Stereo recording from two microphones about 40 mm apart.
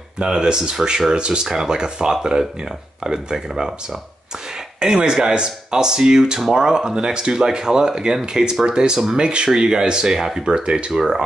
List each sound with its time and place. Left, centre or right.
0.2 s speech: centre
4.7 s speech: right